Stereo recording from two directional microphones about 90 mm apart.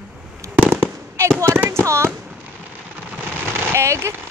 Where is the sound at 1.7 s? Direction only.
30° right (ahead or behind).